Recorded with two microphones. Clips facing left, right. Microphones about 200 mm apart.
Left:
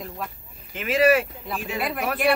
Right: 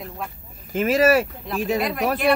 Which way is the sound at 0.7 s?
40° right (ahead or behind).